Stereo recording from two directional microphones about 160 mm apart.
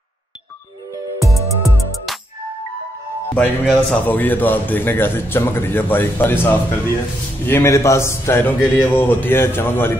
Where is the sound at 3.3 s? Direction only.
10° left (ahead or behind).